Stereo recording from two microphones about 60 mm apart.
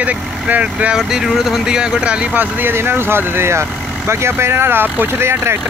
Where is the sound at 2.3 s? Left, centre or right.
Right.